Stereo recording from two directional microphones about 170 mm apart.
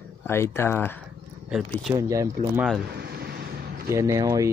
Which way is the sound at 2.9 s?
70° right (ahead or behind).